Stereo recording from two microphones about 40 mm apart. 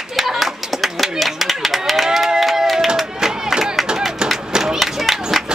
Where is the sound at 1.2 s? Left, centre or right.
Centre.